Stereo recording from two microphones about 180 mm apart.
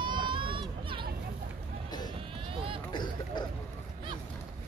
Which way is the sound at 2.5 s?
30° right (ahead or behind).